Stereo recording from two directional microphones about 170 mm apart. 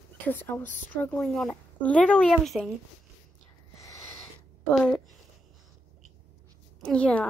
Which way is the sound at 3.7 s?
15° left (ahead or behind).